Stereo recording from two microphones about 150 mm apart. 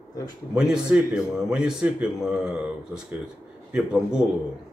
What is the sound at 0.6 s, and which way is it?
Speech, 5° right (ahead or behind).